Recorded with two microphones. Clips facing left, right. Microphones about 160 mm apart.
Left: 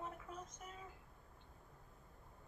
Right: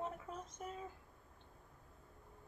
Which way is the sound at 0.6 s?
40° right (ahead or behind).